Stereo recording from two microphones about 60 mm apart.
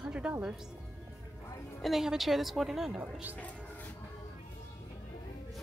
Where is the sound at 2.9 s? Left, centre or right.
Right.